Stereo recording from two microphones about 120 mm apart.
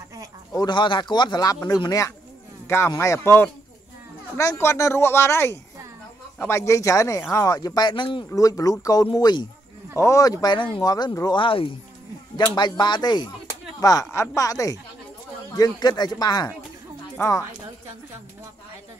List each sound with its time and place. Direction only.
0.5 s speech: 35° left (ahead or behind)
8.4 s speech: 30° left (ahead or behind)
11.3 s speech: 45° left (ahead or behind); by 17.5 s 30° left (ahead or behind)